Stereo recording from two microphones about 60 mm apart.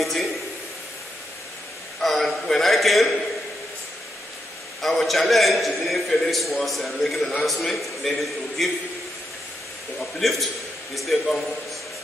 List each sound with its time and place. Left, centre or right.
0.0 s a sound: centre
2.0 s a sound: centre
4.8 s a man's voice: centre
7.2 s a man's voice: centre
7.4 s a man's voice: centre
9.9 s a man's voice: centre